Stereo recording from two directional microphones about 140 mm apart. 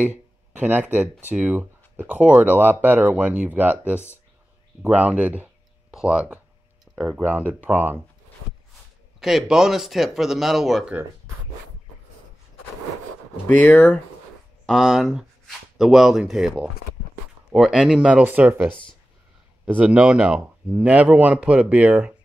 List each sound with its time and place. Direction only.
0.0 s speech: 10° right (ahead or behind)
9.2 s speech: 5° right (ahead or behind)
13.5 s speech: 15° left (ahead or behind)
14.7 s speech: centre (ahead or behind)
18.7 s speech: 35° left (ahead or behind)
19.6 s speech: 10° right (ahead or behind)